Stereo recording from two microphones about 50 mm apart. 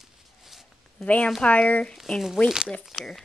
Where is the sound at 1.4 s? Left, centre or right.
Left.